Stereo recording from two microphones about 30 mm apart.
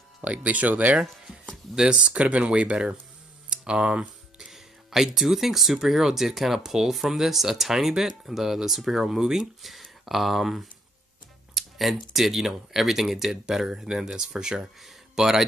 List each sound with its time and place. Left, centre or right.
0.2 s speech: right
1.8 s speech: right
2.0 s speech: right
3.4 s a sound: right
4.5 s speech: centre
9.6 s speech: centre
13.5 s speech: centre